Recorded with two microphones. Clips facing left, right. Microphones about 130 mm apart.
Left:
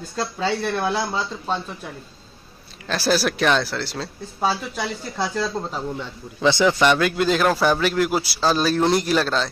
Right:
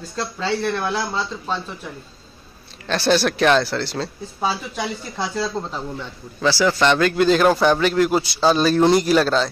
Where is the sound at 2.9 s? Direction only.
Centre (ahead or behind).